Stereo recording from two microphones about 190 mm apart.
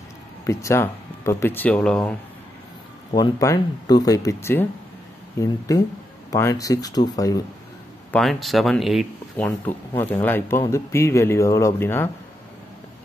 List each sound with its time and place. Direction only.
0.5 s speech: 15° left (ahead or behind)
3.1 s speech: 20° left (ahead or behind)
8.1 s speech: centre (ahead or behind)